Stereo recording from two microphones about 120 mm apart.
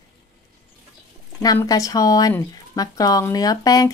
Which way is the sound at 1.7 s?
30° left (ahead or behind).